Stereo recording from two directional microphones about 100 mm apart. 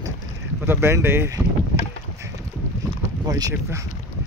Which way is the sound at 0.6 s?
25° right (ahead or behind).